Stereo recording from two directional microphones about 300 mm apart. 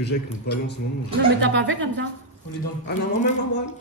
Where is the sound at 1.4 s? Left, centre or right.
Right.